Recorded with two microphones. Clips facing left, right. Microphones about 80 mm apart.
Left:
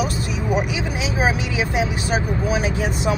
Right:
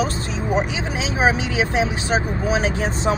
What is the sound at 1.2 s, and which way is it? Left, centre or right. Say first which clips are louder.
Speech: right 3 dB; right.